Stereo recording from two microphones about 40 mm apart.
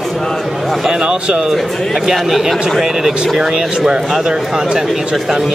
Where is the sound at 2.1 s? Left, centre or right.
Centre.